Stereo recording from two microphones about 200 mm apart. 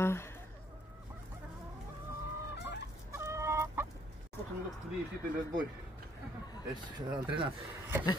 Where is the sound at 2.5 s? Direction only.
60° left (ahead or behind).